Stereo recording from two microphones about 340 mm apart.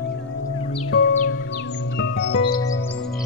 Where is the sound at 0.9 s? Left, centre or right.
Left.